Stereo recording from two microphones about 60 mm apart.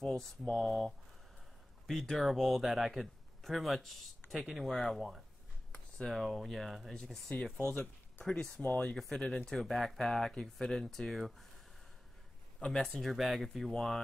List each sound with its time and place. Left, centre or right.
0.0 s speech: centre
7.7 s speech: left
8.3 s speech: centre
8.6 s speech: left
8.9 s speech: centre
9.2 s speech: centre
12.6 s speech: centre